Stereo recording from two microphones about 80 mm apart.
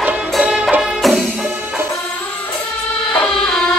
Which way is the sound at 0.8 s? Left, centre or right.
Centre.